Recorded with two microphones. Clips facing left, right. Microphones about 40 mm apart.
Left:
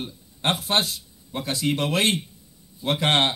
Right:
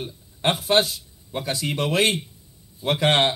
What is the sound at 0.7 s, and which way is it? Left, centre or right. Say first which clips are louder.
A man's voice: right 4 dB; right.